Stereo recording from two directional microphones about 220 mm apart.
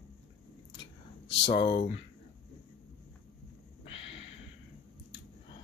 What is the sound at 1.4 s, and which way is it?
Speech, 25° left (ahead or behind).